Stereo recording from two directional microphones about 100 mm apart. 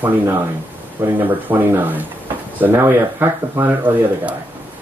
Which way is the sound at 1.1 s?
20° right (ahead or behind).